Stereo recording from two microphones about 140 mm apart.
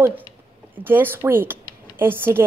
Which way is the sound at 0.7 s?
15° right (ahead or behind).